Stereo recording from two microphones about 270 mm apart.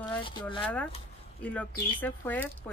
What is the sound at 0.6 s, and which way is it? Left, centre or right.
Speech, centre.